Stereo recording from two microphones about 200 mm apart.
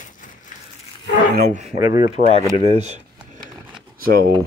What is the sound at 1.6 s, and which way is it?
Speech, 20° right (ahead or behind).